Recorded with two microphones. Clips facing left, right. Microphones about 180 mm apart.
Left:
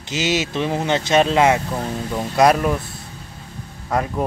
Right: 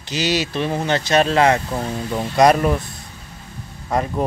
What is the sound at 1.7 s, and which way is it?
Speech, centre (ahead or behind).